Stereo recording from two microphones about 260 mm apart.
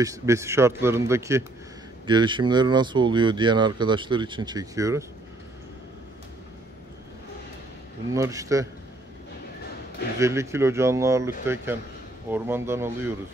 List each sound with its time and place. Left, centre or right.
0.0 s speech: centre
8.1 s speech: centre
10.2 s speech: centre